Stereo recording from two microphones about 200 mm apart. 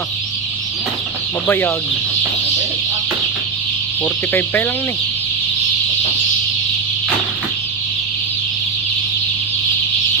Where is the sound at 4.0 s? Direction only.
10° left (ahead or behind).